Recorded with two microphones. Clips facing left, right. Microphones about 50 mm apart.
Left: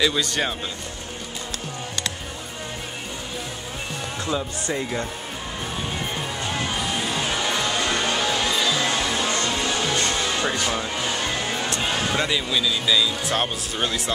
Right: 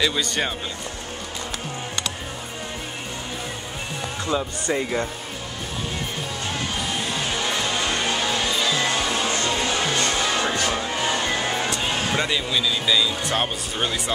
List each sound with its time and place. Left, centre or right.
0.0 s speech: centre
4.3 s speech: centre
6.5 s music: centre
9.4 s music: centre
10.4 s speech: centre
11.1 s music: centre
11.8 s speech: centre